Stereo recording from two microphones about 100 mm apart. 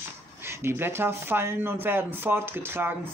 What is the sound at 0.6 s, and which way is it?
A man's voice, 25° right (ahead or behind).